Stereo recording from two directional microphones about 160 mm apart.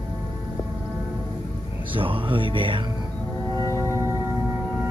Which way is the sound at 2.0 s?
35° right (ahead or behind).